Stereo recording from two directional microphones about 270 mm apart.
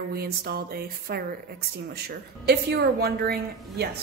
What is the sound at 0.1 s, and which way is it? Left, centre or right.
A woman's voice, right.